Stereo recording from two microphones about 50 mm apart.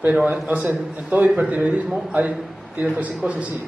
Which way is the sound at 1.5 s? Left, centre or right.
Right.